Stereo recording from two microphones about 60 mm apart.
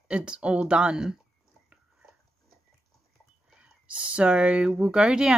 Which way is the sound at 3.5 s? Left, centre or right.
Centre.